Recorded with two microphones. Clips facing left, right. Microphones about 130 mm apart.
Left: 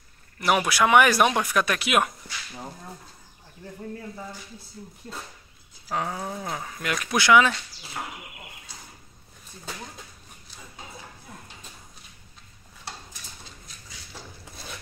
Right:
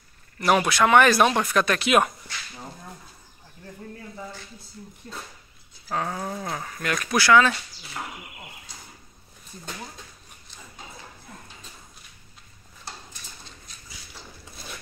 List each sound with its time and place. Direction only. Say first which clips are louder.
0.4 s speech: right 2 dB; 5° left (ahead or behind)
5.9 s speech: right 1 dB; 10° left (ahead or behind)